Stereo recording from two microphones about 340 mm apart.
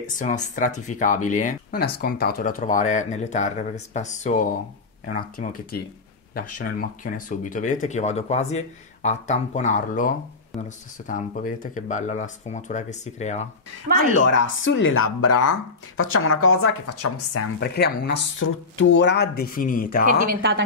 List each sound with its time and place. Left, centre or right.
0.0 s speech: left
13.9 s speech: left
17.6 s speech: left
20.1 s speech: right